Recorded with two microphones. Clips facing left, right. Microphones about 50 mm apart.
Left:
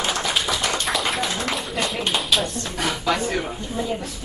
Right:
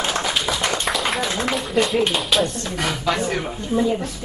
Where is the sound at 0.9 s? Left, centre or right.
Centre.